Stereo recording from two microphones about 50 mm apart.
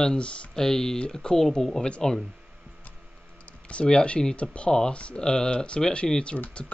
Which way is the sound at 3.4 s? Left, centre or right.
Left.